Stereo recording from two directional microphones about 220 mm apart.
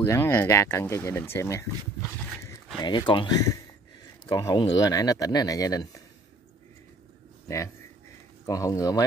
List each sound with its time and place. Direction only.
0.0 s speech: 10° left (ahead or behind)
4.3 s speech: 20° left (ahead or behind)
7.4 s speech: 15° left (ahead or behind)